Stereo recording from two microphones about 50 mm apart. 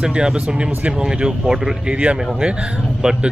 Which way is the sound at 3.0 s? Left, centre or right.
Centre.